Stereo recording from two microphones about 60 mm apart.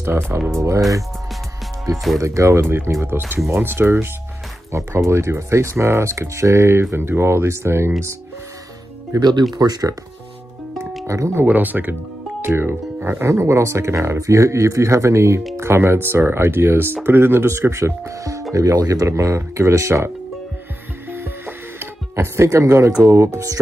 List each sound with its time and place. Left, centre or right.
0.5 s speech: right
2.1 s speech: right
2.6 s speech: right
4.6 s speech: right
9.1 s speech: right
11.1 s speech: right
11.3 s speech: right
12.4 s speech: right
13.3 s speech: right
18.5 s speech: right
21.1 s music: right
23.0 s speech: right